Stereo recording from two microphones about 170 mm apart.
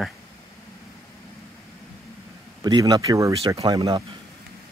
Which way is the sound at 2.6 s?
25° right (ahead or behind).